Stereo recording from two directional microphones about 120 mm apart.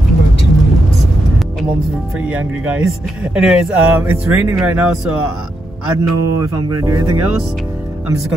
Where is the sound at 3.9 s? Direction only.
20° right (ahead or behind).